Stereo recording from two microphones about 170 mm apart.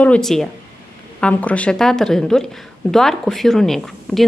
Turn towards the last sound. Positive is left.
turn(degrees=0)  # may be behind; listen again after turning